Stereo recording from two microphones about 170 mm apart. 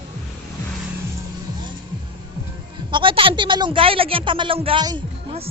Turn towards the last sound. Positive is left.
turn(degrees=-30)  # may be behind; listen again after turning